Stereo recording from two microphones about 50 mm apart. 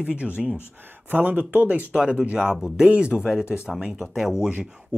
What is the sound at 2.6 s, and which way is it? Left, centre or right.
Speech, centre.